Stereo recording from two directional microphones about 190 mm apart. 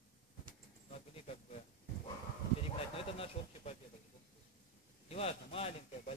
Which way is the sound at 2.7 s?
30° left (ahead or behind).